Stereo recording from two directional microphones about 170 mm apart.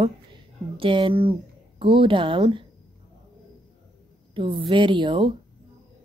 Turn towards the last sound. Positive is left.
turn(degrees=-30)  # may be behind; listen again after turning